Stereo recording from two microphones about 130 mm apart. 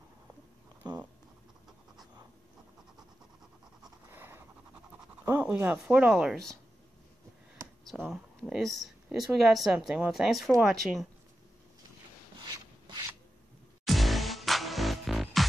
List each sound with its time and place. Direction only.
0.8 s a sound: 35° right (ahead or behind)
4.1 s pant: 15° right (ahead or behind)
5.5 s a woman's voice: 10° right (ahead or behind)
7.8 s speech: centre (ahead or behind)
13.8 s music: centre (ahead or behind)